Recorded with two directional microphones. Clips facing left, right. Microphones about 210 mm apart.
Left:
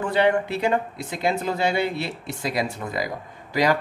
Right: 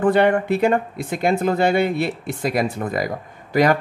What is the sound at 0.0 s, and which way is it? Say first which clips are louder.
Speech: right 4 dB; 50° right (ahead or behind).